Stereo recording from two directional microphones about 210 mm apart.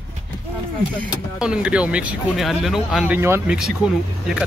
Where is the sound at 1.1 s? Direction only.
5° right (ahead or behind).